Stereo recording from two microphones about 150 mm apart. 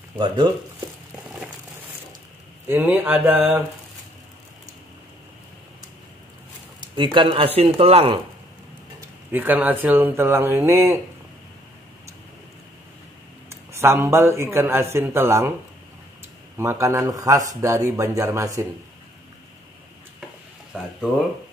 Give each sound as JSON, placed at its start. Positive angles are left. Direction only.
{"t": 2.6, "sound": "a man's voice", "side_deg": -10}
{"t": 7.0, "sound": "speech", "side_deg": -30}
{"t": 9.3, "sound": "a man's voice", "side_deg": -10}
{"t": 13.5, "sound": "a man's voice", "side_deg": -15}
{"t": 16.5, "sound": "a man's voice", "side_deg": -20}
{"t": 20.7, "sound": "a man's voice", "side_deg": -10}